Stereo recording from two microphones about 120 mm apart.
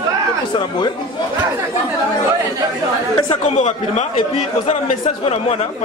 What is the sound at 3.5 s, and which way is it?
Speech, 70° left (ahead or behind).